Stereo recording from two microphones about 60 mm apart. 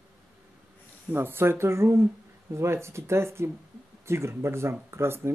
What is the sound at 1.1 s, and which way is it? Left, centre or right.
Speech, right.